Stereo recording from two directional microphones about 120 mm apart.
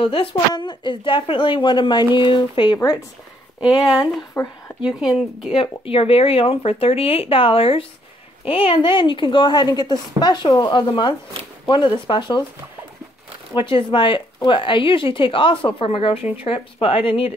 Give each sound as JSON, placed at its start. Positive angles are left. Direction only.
{"t": 0.0, "sound": "a woman's voice", "side_deg": 50}
{"t": 4.3, "sound": "a sound", "side_deg": 20}
{"t": 4.8, "sound": "speech", "side_deg": -5}
{"t": 5.5, "sound": "a woman's voice", "side_deg": 50}
{"t": 13.6, "sound": "speech", "side_deg": 45}